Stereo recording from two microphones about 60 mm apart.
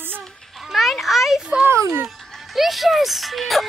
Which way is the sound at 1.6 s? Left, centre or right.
Right.